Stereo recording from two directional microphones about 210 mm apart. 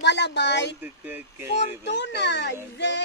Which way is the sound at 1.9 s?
55° left (ahead or behind).